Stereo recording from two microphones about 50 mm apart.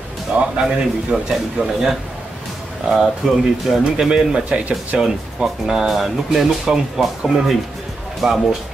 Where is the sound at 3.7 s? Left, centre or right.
Centre.